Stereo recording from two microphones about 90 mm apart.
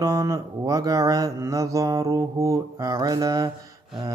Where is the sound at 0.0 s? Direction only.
35° right (ahead or behind).